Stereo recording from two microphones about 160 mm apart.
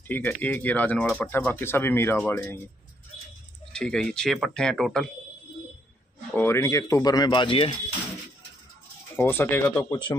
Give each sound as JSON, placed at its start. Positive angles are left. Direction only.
{"t": 0.1, "sound": "speech", "side_deg": 10}
{"t": 3.7, "sound": "speech", "side_deg": 5}
{"t": 6.3, "sound": "speech", "side_deg": 15}
{"t": 9.1, "sound": "speech", "side_deg": 15}